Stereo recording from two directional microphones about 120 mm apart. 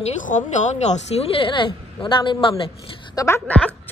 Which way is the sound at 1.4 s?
45° left (ahead or behind).